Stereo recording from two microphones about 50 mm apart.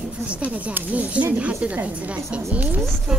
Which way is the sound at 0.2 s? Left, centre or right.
Right.